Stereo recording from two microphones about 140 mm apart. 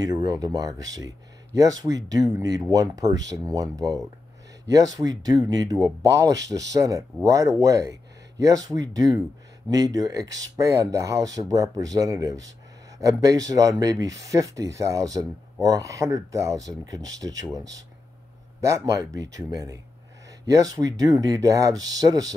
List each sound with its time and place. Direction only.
0.0 s speech: 30° right (ahead or behind)